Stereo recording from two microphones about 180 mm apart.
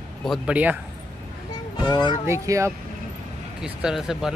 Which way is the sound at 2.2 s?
15° right (ahead or behind).